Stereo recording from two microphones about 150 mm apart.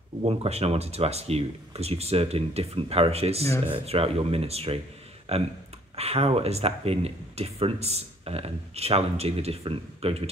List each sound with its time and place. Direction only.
0.2 s speech: 40° right (ahead or behind)